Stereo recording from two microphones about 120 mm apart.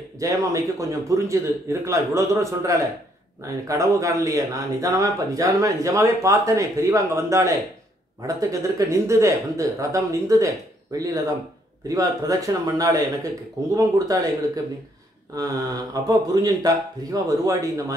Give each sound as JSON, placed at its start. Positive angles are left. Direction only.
{"t": 0.2, "sound": "speech", "side_deg": -25}